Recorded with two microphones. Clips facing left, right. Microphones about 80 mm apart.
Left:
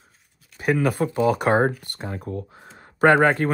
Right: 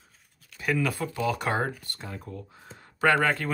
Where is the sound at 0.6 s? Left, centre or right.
Left.